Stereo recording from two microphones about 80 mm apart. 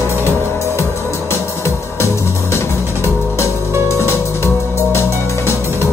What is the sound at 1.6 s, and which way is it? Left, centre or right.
Music, left.